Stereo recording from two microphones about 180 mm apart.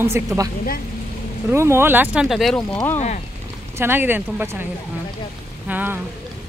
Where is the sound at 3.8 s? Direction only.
10° right (ahead or behind).